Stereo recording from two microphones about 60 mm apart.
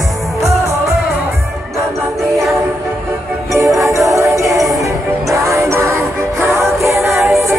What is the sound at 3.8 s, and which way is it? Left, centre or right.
Music, right.